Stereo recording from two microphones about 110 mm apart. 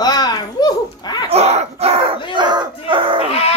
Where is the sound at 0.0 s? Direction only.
35° left (ahead or behind).